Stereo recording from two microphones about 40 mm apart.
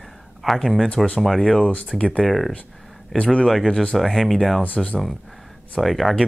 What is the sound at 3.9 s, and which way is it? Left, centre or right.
Speech, centre.